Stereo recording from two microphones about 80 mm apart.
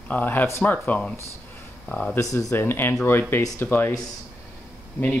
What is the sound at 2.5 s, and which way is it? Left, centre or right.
Speech, left.